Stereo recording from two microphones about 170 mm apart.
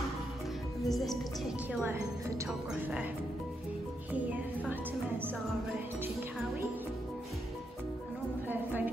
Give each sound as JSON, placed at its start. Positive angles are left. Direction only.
{"t": 0.8, "sound": "a woman's voice", "side_deg": 0}
{"t": 4.6, "sound": "speech", "side_deg": -10}
{"t": 8.5, "sound": "a woman's voice", "side_deg": -10}